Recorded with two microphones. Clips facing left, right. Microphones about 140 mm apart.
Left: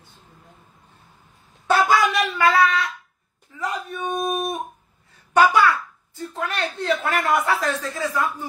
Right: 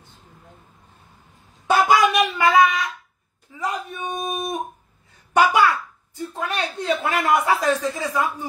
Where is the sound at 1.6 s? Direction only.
15° right (ahead or behind).